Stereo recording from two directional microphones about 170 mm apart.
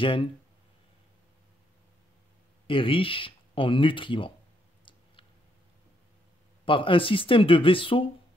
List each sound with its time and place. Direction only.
0.0 s speech: 30° left (ahead or behind)
2.6 s speech: 30° left (ahead or behind)
6.6 s speech: 30° left (ahead or behind)